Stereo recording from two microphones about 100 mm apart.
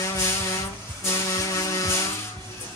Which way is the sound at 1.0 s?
30° left (ahead or behind).